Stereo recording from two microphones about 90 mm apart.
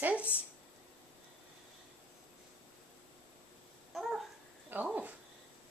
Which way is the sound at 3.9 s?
Centre (ahead or behind).